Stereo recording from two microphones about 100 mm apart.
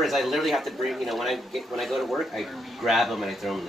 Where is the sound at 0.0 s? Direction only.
Centre (ahead or behind).